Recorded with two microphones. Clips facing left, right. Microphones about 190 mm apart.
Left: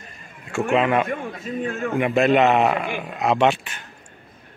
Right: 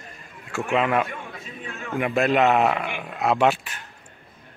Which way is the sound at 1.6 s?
45° left (ahead or behind).